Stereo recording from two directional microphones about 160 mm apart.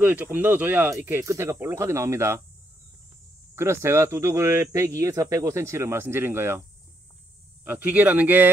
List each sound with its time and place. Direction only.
0.0 s speech: 10° right (ahead or behind)
3.5 s speech: 15° right (ahead or behind)
7.6 s speech: 10° right (ahead or behind)